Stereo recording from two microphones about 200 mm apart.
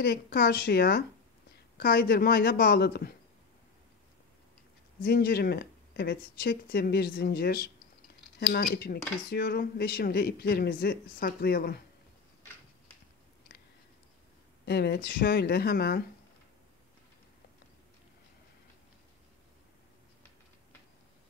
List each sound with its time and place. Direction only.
0.0 s speech: 50° left (ahead or behind)
5.0 s speech: 50° left (ahead or behind)
14.7 s speech: 50° left (ahead or behind)